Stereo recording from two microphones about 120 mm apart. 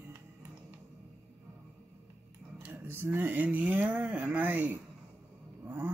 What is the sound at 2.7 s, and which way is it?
Speech, 20° right (ahead or behind).